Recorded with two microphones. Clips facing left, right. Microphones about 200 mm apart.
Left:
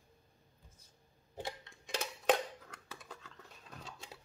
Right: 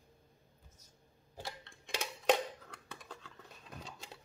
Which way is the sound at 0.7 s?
25° left (ahead or behind).